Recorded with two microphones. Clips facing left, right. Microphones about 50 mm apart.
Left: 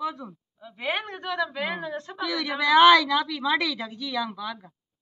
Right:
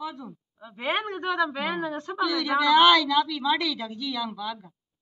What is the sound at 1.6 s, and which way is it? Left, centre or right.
Speech, right.